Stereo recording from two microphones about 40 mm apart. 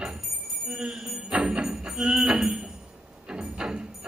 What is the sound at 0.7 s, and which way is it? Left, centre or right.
Jingle bell, right.